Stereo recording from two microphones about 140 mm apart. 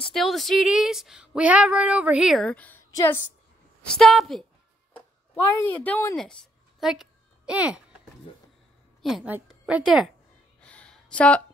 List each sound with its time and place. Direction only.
0.1 s female singing: centre (ahead or behind)
2.4 s a woman's voice: 10° left (ahead or behind)
2.9 s a woman's voice: 25° left (ahead or behind)
3.8 s female singing: 5° left (ahead or behind)
4.9 s speech: 15° left (ahead or behind)
6.1 s a sound: 5° left (ahead or behind)
9.0 s a woman's voice: centre (ahead or behind)
10.6 s a sound: 10° left (ahead or behind)